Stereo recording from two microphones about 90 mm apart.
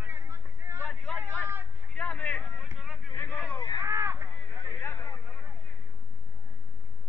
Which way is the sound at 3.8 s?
20° right (ahead or behind).